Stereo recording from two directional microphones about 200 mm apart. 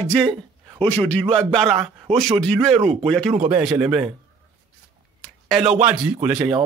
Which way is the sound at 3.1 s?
Centre (ahead or behind).